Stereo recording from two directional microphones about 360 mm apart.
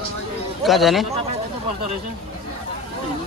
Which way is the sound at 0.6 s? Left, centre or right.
Centre.